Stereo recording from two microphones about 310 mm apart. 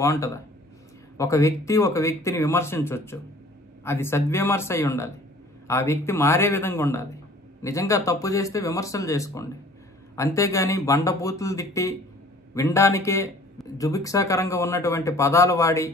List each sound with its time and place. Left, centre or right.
0.0 s speech: centre